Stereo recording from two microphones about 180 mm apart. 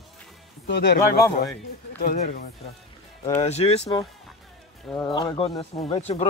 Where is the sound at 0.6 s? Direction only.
75° left (ahead or behind).